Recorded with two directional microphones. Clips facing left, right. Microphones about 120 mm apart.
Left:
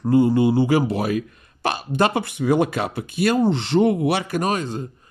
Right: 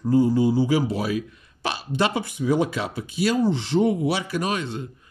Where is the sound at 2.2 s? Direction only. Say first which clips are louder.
Left 3 dB; 70° left (ahead or behind).